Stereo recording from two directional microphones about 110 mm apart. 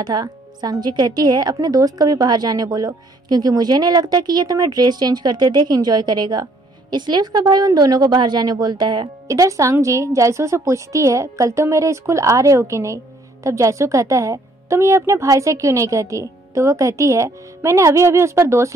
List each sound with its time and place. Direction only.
0.0 s a woman's voice: 40° right (ahead or behind)